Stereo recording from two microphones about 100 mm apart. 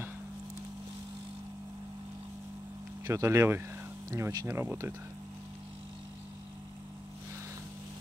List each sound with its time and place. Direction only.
3.1 s speech: 30° right (ahead or behind)
4.5 s speech: 20° right (ahead or behind)